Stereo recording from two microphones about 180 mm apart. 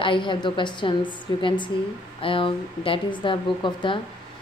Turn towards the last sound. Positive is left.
turn(degrees=25)  # may be behind; listen again after turning